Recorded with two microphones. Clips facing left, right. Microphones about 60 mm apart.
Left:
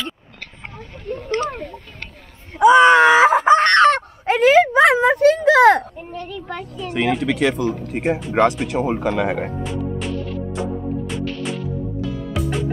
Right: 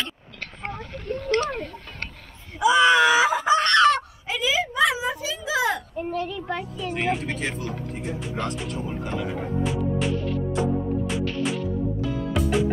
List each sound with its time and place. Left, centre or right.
0.7 s a sound: centre
2.5 s wail: left
5.9 s a sound: centre
6.4 s speech: centre
6.9 s speech: left
9.6 s music: centre